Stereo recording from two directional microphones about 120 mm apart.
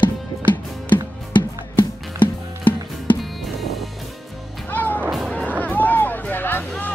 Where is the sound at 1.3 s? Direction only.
40° left (ahead or behind).